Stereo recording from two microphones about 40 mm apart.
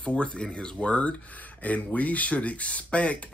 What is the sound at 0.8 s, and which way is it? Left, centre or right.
Speech, left.